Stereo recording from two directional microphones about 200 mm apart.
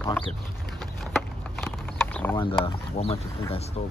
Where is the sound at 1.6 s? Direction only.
10° left (ahead or behind).